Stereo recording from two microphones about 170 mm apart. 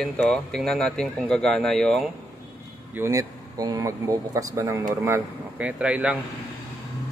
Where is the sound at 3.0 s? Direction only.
20° right (ahead or behind).